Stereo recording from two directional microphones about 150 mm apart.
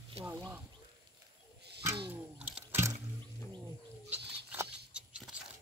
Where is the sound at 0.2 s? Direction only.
15° right (ahead or behind).